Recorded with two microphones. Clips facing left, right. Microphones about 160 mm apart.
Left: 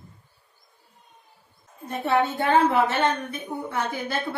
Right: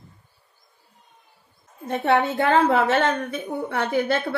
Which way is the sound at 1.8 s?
90° right.